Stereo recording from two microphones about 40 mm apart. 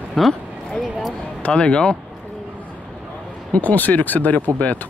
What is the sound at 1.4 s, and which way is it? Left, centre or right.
Speech, left.